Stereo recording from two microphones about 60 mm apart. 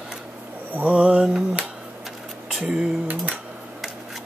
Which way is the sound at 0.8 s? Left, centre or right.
Right.